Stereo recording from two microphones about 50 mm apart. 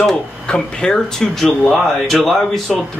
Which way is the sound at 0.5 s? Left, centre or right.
Centre.